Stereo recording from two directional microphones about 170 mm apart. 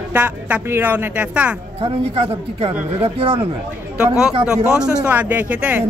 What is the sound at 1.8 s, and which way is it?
Speech, 35° right (ahead or behind).